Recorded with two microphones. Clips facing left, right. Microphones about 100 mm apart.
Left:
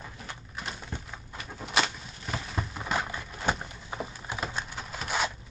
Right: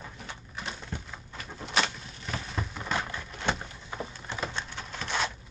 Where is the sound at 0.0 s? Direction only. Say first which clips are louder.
Even; centre (ahead or behind).